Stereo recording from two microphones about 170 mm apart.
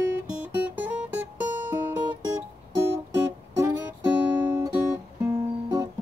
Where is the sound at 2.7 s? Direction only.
15° right (ahead or behind).